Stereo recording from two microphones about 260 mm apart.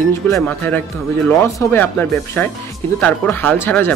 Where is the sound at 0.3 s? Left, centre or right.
Centre.